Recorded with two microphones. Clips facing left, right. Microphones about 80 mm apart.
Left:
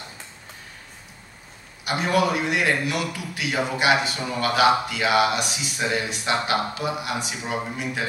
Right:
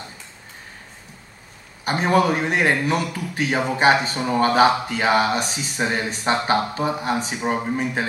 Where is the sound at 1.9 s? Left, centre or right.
Right.